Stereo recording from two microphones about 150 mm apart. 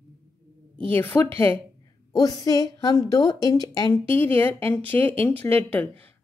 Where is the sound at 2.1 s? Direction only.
25° left (ahead or behind).